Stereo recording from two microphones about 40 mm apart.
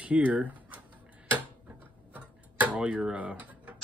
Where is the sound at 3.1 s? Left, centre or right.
Right.